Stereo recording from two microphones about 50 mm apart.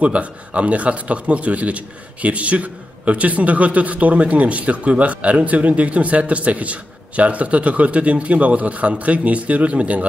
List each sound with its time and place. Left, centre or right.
0.0 s a man's voice: right